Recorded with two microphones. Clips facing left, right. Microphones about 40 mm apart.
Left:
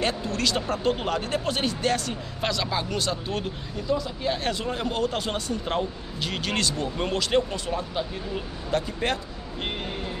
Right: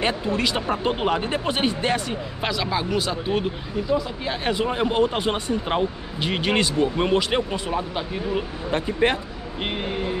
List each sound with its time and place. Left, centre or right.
0.0 s speech: right